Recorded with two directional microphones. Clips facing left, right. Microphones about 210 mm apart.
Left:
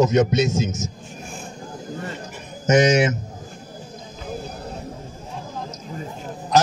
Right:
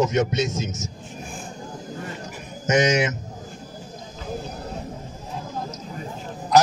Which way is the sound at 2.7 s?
30° left (ahead or behind).